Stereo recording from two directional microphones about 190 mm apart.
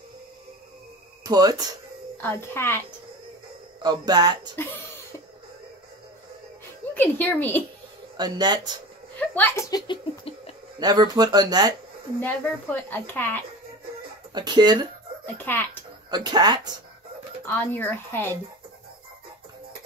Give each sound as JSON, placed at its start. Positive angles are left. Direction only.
{"t": 1.2, "sound": "speech", "side_deg": -20}
{"t": 2.1, "sound": "speech", "side_deg": 10}
{"t": 3.8, "sound": "speech", "side_deg": -20}
{"t": 4.6, "sound": "speech", "side_deg": 10}
{"t": 6.9, "sound": "speech", "side_deg": 10}
{"t": 8.2, "sound": "speech", "side_deg": -20}
{"t": 9.3, "sound": "a child's voice", "side_deg": 10}
{"t": 10.8, "sound": "speech", "side_deg": -20}
{"t": 12.2, "sound": "speech", "side_deg": 10}
{"t": 14.3, "sound": "speech", "side_deg": -25}
{"t": 15.3, "sound": "speech", "side_deg": 10}
{"t": 16.1, "sound": "speech", "side_deg": -20}
{"t": 17.5, "sound": "speech", "side_deg": 10}